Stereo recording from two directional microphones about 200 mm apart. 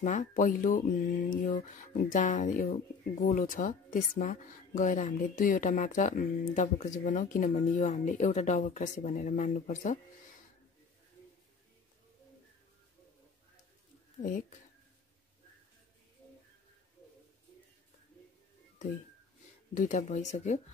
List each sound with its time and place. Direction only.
0.0 s speech: 40° left (ahead or behind)
14.2 s speech: 40° left (ahead or behind)
19.7 s speech: 40° left (ahead or behind)